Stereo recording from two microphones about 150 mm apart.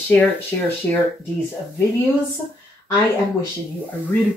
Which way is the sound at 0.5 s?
15° left (ahead or behind).